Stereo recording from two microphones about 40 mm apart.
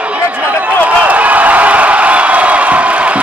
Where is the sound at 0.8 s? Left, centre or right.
Right.